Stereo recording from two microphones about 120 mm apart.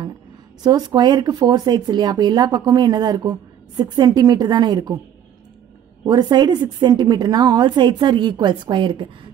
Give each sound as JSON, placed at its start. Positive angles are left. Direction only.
{"t": 0.7, "sound": "speech", "side_deg": -35}
{"t": 6.0, "sound": "speech", "side_deg": -35}